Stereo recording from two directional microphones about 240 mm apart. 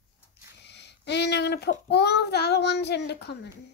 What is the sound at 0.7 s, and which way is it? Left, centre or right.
Child singing, left.